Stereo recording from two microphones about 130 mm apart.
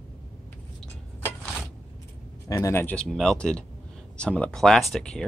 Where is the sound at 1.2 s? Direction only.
15° left (ahead or behind).